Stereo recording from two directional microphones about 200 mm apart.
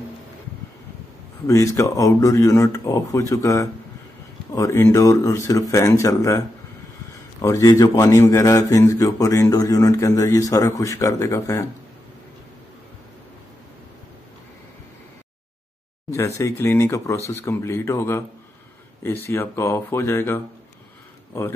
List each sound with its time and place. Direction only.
1.5 s a man's voice: 15° left (ahead or behind)
7.4 s a man's voice: 15° left (ahead or behind)
16.1 s a man's voice: 15° left (ahead or behind)